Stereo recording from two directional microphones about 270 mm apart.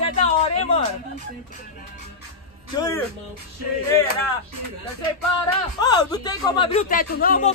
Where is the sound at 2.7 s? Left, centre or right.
Centre.